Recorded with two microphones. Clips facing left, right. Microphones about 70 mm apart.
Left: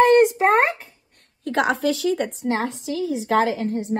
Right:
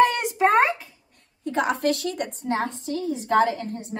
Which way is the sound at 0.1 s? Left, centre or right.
Left.